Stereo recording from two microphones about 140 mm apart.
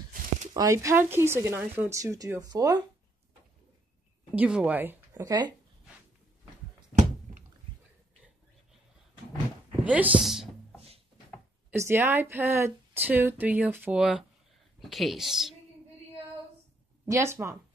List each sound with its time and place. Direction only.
0.1 s a sound: 80° right
0.6 s speech: 20° right (ahead or behind)
4.4 s speech: 10° right (ahead or behind); by 5.5 s 25° right (ahead or behind)
7.0 s a sound: 65° right (ahead or behind)
9.8 s speech: 10° right (ahead or behind)
11.7 s speech: 20° right (ahead or behind); by 15.5 s centre (ahead or behind)
17.0 s speech: 20° right (ahead or behind)